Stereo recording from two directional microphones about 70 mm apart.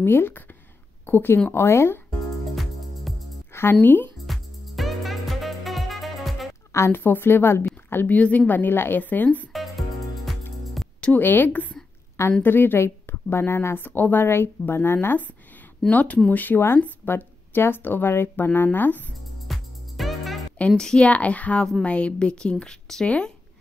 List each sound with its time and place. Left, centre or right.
0.0 s speech: left
2.5 s music: centre
3.8 s speech: left
4.3 s music: centre
6.9 s speech: left
9.5 s music: centre
11.1 s speech: left
19.4 s music: centre
20.7 s speech: centre